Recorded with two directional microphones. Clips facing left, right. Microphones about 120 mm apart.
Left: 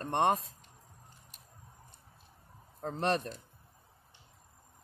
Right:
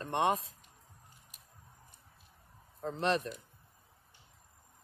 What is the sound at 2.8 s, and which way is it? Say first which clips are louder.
Speech: even; 40° left (ahead or behind).